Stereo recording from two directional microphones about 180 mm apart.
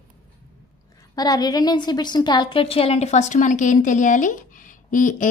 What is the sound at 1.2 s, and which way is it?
A woman's voice, 20° left (ahead or behind).